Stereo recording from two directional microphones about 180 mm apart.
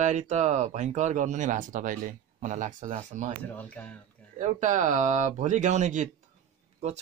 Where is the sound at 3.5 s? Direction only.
10° left (ahead or behind).